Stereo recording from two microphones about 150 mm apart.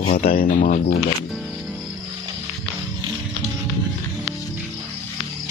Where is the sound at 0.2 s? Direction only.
75° left (ahead or behind).